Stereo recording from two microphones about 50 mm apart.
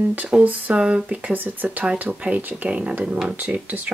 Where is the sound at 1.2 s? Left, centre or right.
Right.